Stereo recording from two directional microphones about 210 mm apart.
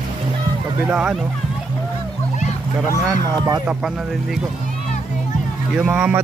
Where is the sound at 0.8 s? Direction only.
5° right (ahead or behind).